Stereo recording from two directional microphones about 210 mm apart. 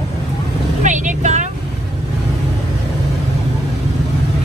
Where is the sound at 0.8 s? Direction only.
35° right (ahead or behind).